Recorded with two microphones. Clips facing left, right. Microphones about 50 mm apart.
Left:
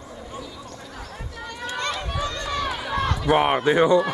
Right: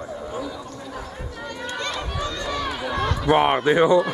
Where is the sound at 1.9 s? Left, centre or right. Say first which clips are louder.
Even; centre.